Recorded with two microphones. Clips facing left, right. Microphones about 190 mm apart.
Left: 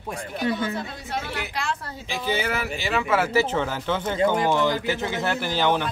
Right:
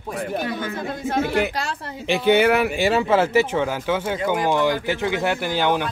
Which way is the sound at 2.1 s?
65° right (ahead or behind).